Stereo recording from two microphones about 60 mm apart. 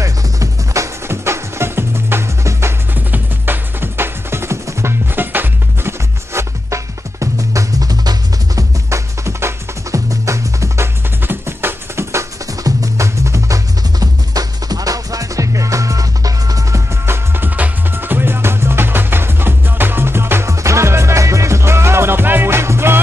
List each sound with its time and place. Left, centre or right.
0.0 s music: right
1.0 s music: right
2.9 s music: right
5.1 s music: right
11.2 s music: right
12.4 s music: right
13.9 s music: right
16.9 s music: right
17.5 s music: right